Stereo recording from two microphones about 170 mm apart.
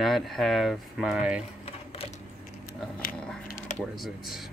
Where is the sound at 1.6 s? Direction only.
35° left (ahead or behind).